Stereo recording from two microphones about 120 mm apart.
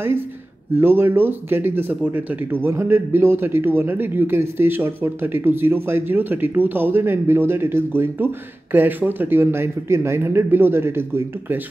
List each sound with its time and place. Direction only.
0.7 s speech: 20° right (ahead or behind)